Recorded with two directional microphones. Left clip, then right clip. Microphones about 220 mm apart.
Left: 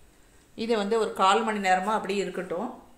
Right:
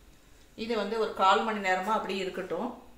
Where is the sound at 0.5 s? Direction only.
50° left (ahead or behind).